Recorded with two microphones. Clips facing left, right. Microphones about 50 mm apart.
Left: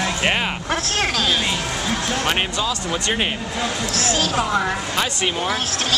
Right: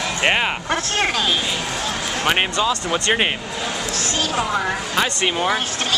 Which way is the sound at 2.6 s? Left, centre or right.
Right.